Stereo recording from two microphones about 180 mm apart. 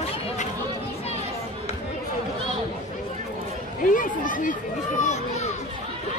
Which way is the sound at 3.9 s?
45° left (ahead or behind).